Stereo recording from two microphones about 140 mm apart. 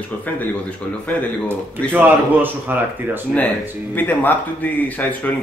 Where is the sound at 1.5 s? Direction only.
15° right (ahead or behind).